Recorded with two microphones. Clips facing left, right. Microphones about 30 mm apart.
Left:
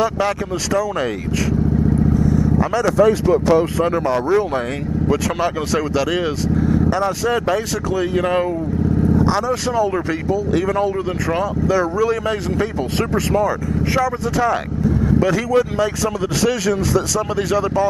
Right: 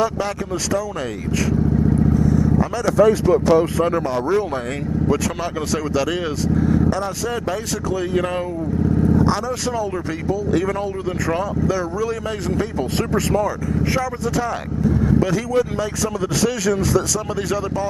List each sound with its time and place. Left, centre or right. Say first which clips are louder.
0.0 s speech: left 3 dB; centre
2.7 s speech: left 1 dB; centre
8.3 s speech: left 6 dB; centre
9.3 s speech: left 3 dB; centre